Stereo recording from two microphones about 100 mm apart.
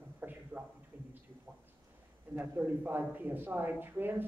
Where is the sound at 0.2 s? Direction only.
20° right (ahead or behind).